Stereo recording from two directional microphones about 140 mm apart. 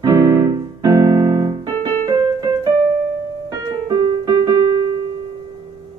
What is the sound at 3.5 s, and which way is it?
Piano, 30° right (ahead or behind).